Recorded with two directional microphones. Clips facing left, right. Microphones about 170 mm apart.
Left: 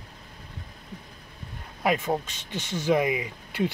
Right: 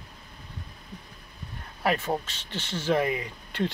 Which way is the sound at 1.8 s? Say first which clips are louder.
Left 2 dB; 15° left (ahead or behind).